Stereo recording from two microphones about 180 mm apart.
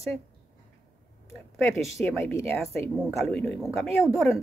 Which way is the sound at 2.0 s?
Centre (ahead or behind).